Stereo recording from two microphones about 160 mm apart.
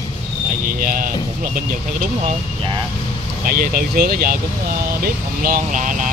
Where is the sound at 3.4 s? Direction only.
65° right (ahead or behind).